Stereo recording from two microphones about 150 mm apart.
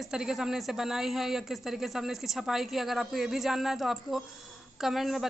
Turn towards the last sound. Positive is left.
turn(degrees=0)  # may be behind; listen again after turning